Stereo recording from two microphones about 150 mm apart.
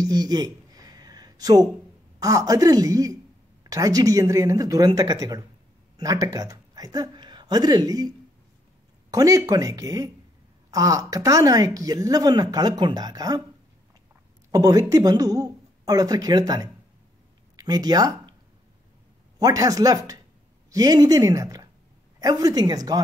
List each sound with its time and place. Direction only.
0.0 s a sound: 25° right (ahead or behind)
2.1 s a woman's voice: 25° right (ahead or behind)
9.1 s a woman's voice: 25° right (ahead or behind)
14.5 s a woman's voice: 25° right (ahead or behind)
19.3 s a woman's voice: 25° right (ahead or behind)